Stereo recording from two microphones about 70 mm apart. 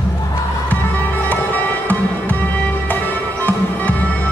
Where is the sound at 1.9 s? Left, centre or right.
Left.